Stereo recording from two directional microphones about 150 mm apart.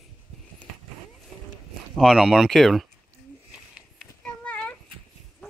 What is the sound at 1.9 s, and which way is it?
Speech, centre (ahead or behind).